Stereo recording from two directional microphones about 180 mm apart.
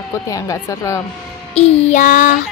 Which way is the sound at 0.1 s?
20° left (ahead or behind).